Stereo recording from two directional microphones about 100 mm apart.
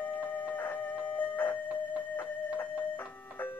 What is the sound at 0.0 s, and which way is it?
Music, 15° left (ahead or behind).